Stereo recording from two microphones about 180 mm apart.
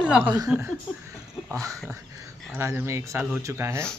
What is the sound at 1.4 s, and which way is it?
Speech, 20° right (ahead or behind).